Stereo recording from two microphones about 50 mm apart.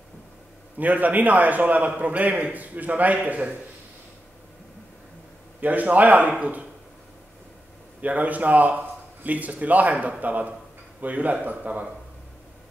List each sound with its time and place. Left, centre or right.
0.7 s a man's voice: right
5.6 s a man's voice: right
8.0 s a man's voice: right